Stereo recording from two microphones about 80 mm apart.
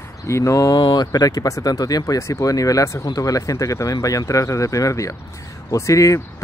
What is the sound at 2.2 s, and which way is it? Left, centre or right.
Speech, left.